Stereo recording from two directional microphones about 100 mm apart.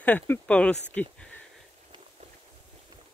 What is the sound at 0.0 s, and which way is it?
Speech, 15° left (ahead or behind).